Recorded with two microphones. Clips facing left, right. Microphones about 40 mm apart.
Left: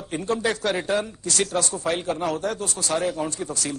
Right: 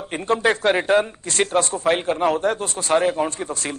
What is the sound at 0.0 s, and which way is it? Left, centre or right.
A man's voice, right.